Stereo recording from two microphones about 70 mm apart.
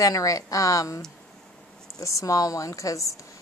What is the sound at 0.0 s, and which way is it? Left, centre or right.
A woman's voice, left.